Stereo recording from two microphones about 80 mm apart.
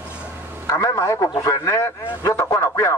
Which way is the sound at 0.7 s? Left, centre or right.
Left.